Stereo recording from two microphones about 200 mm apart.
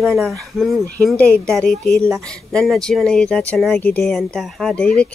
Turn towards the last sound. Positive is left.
turn(degrees=5)  # may be behind; listen again after turning